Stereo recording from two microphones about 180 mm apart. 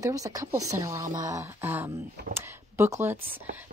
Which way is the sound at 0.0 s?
20° right (ahead or behind).